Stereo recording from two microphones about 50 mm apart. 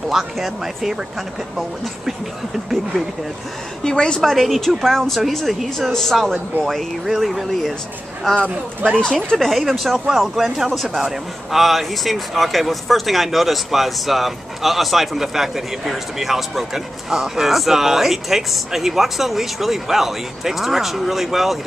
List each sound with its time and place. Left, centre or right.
0.1 s speech: centre
3.8 s speech: centre
4.2 s a man's voice: centre
8.3 s speech: centre
9.5 s a man's voice: centre